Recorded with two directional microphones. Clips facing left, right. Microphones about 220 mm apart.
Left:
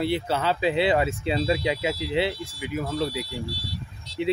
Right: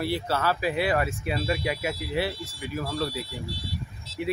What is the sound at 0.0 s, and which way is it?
Speech, 20° left (ahead or behind).